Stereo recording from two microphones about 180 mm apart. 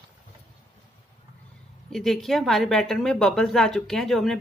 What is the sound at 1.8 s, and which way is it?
A woman's voice, centre (ahead or behind).